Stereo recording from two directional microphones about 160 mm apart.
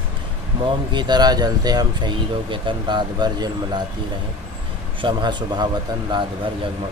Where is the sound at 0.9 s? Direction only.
25° right (ahead or behind).